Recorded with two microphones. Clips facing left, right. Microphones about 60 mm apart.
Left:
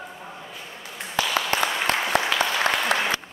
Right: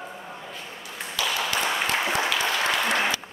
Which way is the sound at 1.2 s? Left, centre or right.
Left.